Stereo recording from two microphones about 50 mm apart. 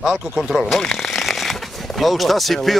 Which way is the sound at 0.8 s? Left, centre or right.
Centre.